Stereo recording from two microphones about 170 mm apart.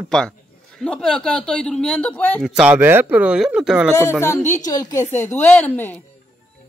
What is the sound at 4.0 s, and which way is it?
Speech, 15° left (ahead or behind).